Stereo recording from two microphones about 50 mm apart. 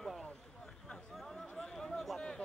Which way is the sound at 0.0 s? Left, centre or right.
Centre.